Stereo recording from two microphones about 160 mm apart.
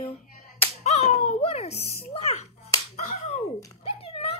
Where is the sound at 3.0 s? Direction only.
45° left (ahead or behind).